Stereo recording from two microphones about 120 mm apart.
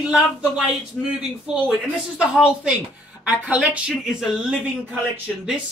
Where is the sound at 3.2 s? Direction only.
10° right (ahead or behind).